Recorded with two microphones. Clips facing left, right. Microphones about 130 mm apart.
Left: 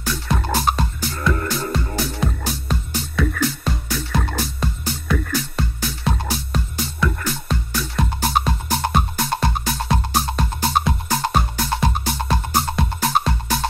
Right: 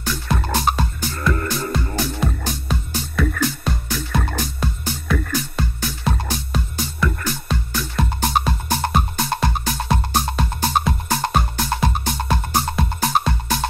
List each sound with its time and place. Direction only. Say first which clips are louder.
0.1 s music: even; centre (ahead or behind)